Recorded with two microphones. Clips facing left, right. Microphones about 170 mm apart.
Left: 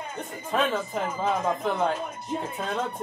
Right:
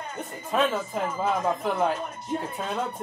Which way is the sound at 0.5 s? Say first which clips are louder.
Right 1 dB; centre (ahead or behind).